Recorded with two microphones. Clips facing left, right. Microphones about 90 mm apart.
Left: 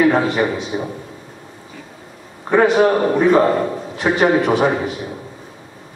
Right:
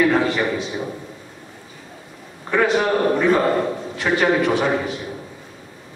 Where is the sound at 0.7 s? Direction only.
25° left (ahead or behind).